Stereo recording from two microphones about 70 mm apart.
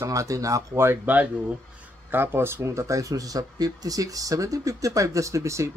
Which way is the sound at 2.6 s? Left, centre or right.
Right.